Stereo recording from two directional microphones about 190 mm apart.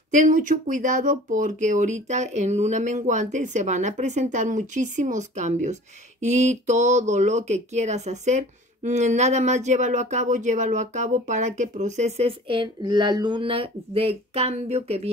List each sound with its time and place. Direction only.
0.1 s speech: 45° right (ahead or behind)